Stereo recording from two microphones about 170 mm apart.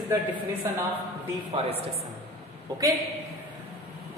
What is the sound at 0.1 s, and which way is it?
Speech, 10° right (ahead or behind).